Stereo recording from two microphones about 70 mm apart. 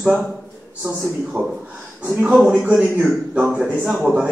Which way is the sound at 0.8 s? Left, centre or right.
Right.